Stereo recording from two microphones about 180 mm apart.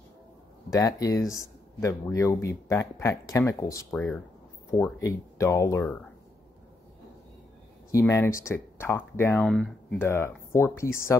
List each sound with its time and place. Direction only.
0.7 s speech: 20° left (ahead or behind)
3.9 s speech: centre (ahead or behind)
4.6 s speech: 15° left (ahead or behind)
7.9 s speech: 15° left (ahead or behind)